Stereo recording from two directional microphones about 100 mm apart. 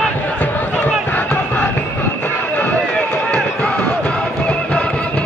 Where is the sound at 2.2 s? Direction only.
15° left (ahead or behind).